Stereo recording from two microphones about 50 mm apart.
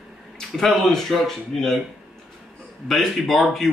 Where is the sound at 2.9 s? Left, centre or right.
Centre.